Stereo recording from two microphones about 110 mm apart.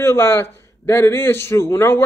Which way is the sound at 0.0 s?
25° left (ahead or behind).